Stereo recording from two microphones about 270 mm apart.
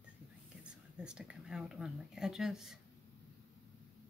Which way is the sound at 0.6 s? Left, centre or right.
Centre.